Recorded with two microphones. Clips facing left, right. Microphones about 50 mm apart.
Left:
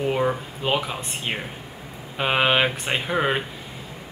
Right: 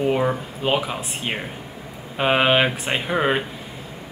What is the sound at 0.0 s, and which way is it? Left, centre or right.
Speech, centre.